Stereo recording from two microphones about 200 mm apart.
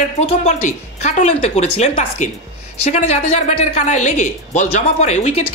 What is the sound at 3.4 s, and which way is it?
Speech, 35° left (ahead or behind).